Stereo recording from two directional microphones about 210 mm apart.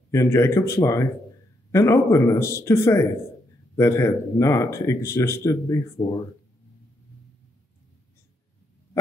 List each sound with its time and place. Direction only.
0.1 s speech: 15° left (ahead or behind)
6.0 s speech: 25° left (ahead or behind)